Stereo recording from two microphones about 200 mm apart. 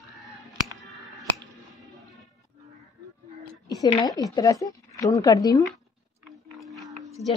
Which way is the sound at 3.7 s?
20° left (ahead or behind).